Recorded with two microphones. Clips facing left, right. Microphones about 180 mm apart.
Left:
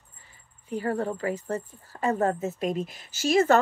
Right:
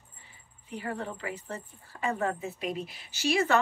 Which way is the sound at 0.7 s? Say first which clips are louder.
Left 8 dB; 45° left (ahead or behind).